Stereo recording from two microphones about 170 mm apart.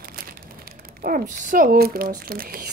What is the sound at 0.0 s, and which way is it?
Crumpling, 60° right (ahead or behind).